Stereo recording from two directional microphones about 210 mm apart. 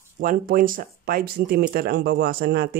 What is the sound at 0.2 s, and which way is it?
Speech, 40° right (ahead or behind).